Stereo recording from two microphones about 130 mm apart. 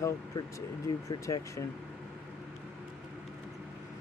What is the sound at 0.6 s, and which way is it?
Speech, 25° left (ahead or behind).